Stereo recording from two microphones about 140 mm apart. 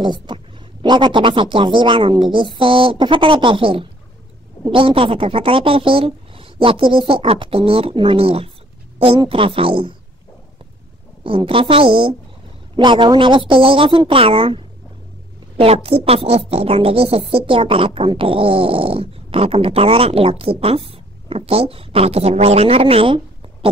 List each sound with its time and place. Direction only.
0.0 s a woman's voice: 35° right (ahead or behind)
11.2 s a woman's voice: 40° right (ahead or behind)